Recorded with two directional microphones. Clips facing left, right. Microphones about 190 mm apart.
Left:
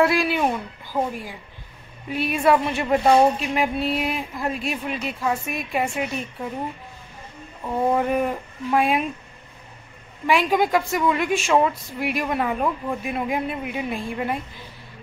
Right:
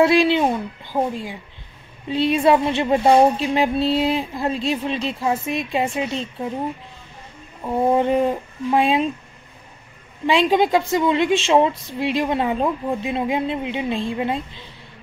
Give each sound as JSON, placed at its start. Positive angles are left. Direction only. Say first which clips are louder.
{"t": 0.0, "sound": "a woman's voice", "louder": "right 4 dB", "side_deg": -25}
{"t": 7.6, "sound": "a woman's voice", "louder": "right 3 dB", "side_deg": -25}
{"t": 10.2, "sound": "a woman's voice", "louder": "right 3 dB", "side_deg": -25}